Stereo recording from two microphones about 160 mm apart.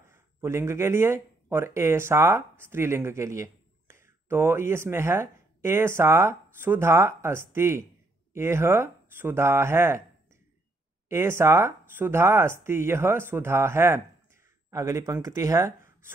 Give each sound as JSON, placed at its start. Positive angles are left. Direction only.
{"t": 0.1, "sound": "speech", "side_deg": -15}
{"t": 11.1, "sound": "speech", "side_deg": -15}